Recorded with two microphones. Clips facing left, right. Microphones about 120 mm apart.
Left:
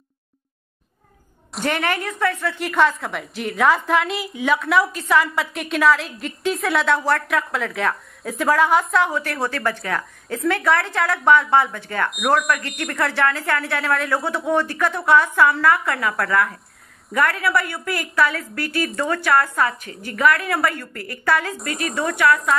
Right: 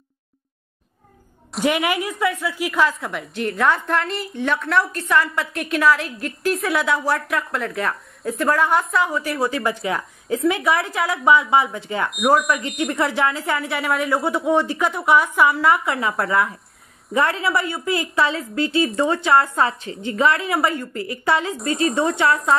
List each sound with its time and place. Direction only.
1.5 s a woman's voice: 5° right (ahead or behind)
9.5 s speech: 15° right (ahead or behind)
12.1 s a woman's voice: centre (ahead or behind)
12.9 s a woman's voice: 20° right (ahead or behind)